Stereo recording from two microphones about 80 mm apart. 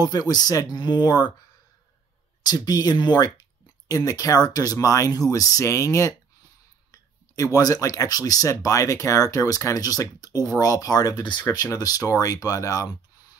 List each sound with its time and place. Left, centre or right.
0.0 s speech: left
2.4 s speech: left
3.9 s speech: left